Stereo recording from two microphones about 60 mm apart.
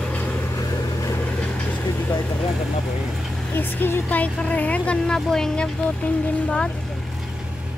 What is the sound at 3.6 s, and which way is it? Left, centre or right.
Vehicle, left.